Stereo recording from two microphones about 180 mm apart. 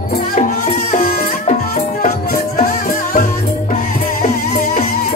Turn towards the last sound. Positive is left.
turn(degrees=50)  # may be behind; listen again after turning